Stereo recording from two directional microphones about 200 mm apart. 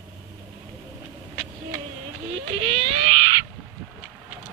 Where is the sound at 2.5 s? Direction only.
30° right (ahead or behind).